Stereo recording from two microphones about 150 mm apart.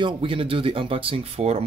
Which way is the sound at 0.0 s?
35° right (ahead or behind).